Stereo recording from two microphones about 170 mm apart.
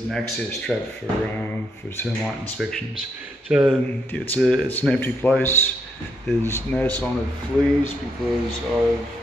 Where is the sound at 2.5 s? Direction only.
Centre (ahead or behind).